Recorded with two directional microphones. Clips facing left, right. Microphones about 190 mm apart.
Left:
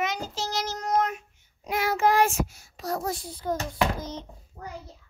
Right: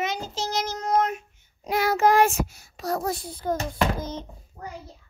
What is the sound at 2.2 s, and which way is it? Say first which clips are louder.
A child's voice: right 2 dB; 65° right (ahead or behind).